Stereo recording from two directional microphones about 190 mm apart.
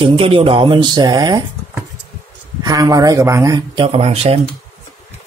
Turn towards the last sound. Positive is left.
turn(degrees=-30)  # may be behind; listen again after turning